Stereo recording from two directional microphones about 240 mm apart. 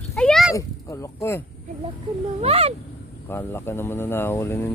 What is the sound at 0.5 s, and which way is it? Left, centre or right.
Speech, centre.